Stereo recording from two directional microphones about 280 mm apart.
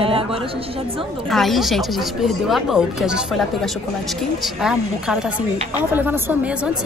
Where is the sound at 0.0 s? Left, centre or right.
Centre.